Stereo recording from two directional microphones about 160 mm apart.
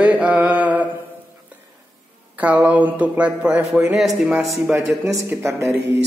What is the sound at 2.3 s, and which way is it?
Speech, 10° right (ahead or behind).